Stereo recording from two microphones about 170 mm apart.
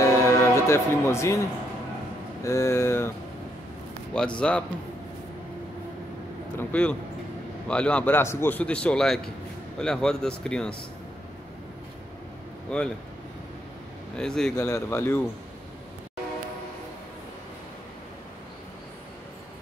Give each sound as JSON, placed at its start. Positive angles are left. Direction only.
{"t": 0.0, "sound": "music", "side_deg": 15}
{"t": 2.4, "sound": "a man's voice", "side_deg": 15}
{"t": 4.1, "sound": "speech", "side_deg": 5}
{"t": 6.5, "sound": "a man's voice", "side_deg": 10}
{"t": 12.7, "sound": "speech", "side_deg": 5}
{"t": 14.1, "sound": "speech", "side_deg": 5}
{"t": 14.6, "sound": "a man's voice", "side_deg": 15}